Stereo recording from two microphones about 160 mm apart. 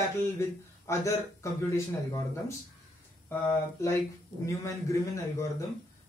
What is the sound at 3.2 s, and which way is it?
Speech, 15° left (ahead or behind).